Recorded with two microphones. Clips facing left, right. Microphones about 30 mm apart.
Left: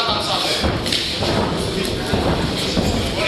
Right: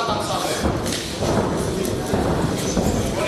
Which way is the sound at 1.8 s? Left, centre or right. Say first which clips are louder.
Left 1 dB; left.